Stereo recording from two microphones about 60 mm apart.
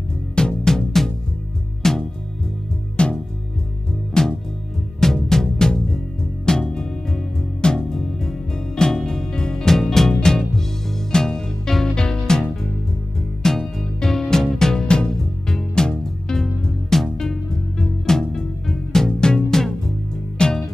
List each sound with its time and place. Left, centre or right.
0.4 s music: centre